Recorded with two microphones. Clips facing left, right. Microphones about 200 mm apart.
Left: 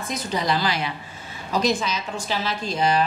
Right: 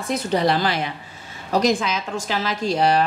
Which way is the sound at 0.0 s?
60° right (ahead or behind).